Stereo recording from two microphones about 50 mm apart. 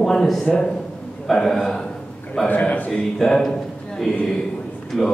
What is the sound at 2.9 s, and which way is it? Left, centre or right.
A man's voice, centre.